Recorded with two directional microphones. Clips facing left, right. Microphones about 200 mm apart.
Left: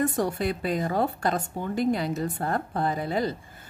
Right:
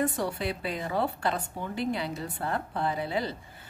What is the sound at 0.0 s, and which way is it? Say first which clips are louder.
A woman's voice: left 4 dB; 45° left (ahead or behind).